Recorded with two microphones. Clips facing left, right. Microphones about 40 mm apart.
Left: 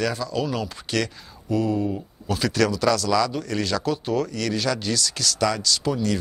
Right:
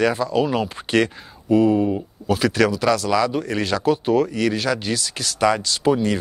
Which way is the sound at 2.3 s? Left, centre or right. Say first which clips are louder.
Right 4 dB; centre.